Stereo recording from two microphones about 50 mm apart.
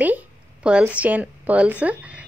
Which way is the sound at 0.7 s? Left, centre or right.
Right.